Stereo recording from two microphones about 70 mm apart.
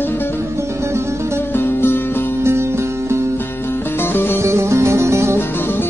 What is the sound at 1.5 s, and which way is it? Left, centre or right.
Music, left.